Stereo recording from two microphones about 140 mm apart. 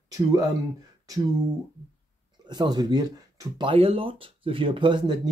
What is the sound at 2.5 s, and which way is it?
Speech, 30° right (ahead or behind).